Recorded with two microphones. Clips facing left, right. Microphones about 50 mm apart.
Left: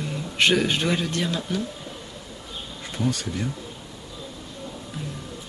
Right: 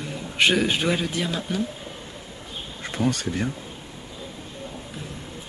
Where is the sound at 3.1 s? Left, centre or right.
Right.